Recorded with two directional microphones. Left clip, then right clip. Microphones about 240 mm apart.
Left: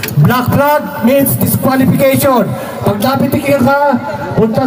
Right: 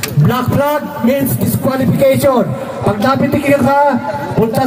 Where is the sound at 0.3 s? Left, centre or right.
Left.